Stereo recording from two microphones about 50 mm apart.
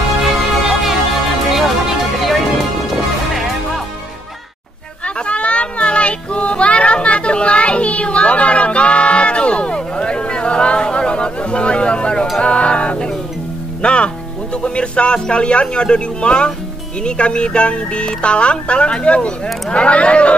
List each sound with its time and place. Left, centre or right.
0.2 s music: centre
5.0 s child singing: left
12.4 s music: left
17.0 s speech: centre